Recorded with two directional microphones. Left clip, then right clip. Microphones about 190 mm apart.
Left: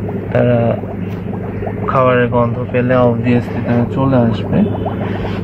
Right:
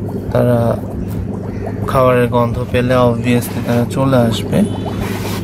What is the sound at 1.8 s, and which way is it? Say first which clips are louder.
Speech: even; 20° right (ahead or behind).